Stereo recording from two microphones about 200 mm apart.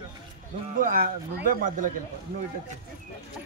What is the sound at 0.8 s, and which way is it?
Speech, 45° right (ahead or behind).